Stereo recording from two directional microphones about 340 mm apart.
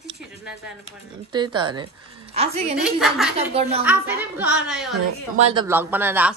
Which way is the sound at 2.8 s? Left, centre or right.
Centre.